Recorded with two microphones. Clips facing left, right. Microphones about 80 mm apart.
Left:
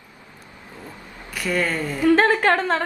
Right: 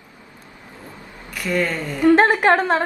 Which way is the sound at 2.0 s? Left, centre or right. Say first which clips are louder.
Right 3 dB; right.